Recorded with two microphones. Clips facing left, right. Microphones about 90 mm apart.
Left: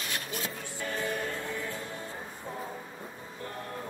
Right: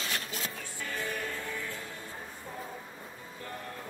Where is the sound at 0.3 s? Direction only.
20° left (ahead or behind).